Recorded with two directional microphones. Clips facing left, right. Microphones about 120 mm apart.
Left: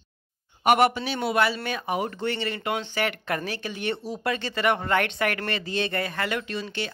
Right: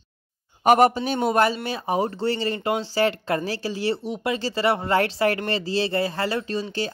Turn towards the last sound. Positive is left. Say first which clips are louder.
# right 4 dB
turn(degrees=-35)  # may be behind; listen again after turning